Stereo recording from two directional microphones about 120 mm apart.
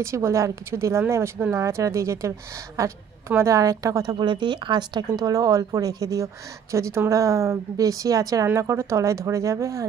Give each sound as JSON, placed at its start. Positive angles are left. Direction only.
{"t": 0.0, "sound": "a woman's voice", "side_deg": -25}